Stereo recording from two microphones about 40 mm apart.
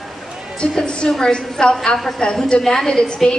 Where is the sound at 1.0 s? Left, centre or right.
Left.